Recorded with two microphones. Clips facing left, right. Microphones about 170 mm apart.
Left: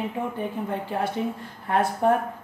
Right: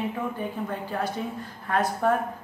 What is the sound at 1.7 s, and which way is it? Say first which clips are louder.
Speech: left 2 dB; 25° left (ahead or behind).